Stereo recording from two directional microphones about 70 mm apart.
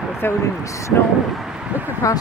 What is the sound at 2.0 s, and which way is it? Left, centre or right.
Speech, left.